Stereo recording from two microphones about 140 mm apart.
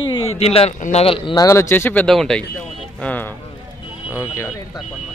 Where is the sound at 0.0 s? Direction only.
40° left (ahead or behind).